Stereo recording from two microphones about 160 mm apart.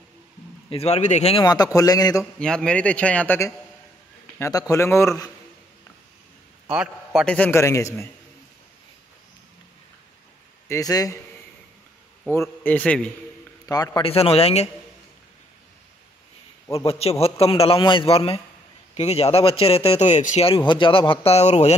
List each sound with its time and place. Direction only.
0.7 s a man's voice: 40° left (ahead or behind)
1.4 s speech: 25° left (ahead or behind)
2.3 s a man's voice: 5° left (ahead or behind)
6.7 s a man's voice: 5° right (ahead or behind); by 7.9 s 20° left (ahead or behind)
10.7 s speech: 20° left (ahead or behind)
12.4 s a man's voice: 10° left (ahead or behind)
13.7 s speech: 20° left (ahead or behind)
14.0 s a man's voice: 40° left (ahead or behind)
16.8 s a man's voice: 40° left (ahead or behind)